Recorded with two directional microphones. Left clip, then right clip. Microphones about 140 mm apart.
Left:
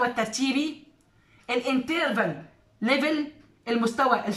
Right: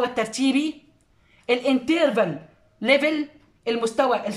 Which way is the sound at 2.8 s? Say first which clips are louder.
Right 5 dB; 10° right (ahead or behind).